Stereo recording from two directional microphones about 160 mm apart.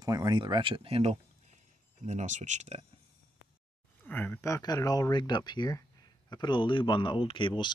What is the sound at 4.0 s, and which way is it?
Speech, 10° left (ahead or behind).